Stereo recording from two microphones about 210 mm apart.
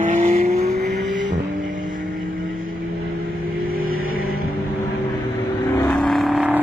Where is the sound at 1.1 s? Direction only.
35° right (ahead or behind).